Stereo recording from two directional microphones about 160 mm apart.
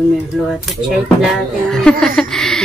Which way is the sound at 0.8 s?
Centre (ahead or behind).